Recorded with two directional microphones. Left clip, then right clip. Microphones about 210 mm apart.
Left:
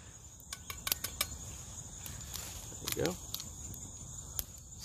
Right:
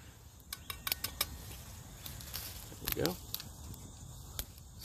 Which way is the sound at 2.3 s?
5° right (ahead or behind).